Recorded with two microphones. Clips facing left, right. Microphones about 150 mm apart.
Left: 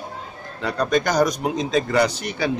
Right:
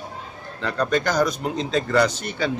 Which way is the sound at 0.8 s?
15° left (ahead or behind).